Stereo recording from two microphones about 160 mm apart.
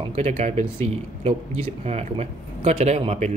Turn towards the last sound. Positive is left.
turn(degrees=-45)  # may be behind; listen again after turning